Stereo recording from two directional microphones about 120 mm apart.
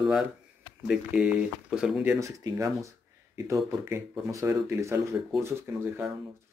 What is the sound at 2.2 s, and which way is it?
Speech, 30° right (ahead or behind).